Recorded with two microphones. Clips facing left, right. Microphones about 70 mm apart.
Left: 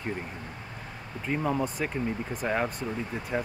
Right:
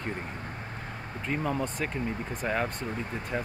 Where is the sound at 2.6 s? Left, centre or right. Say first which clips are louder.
Left 1 dB; right.